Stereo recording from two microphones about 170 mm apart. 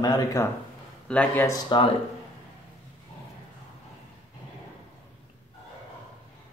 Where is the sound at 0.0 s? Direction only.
20° left (ahead or behind).